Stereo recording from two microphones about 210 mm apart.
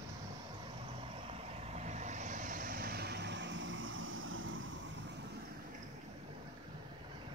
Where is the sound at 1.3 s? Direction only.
30° right (ahead or behind); by 5.2 s 65° right (ahead or behind).